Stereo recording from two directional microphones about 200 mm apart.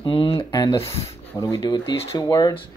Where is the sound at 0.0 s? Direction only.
25° left (ahead or behind).